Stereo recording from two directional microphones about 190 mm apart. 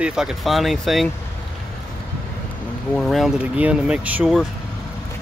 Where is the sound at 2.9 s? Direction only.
Centre (ahead or behind).